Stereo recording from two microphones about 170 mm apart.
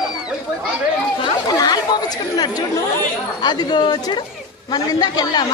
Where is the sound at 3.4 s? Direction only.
25° left (ahead or behind).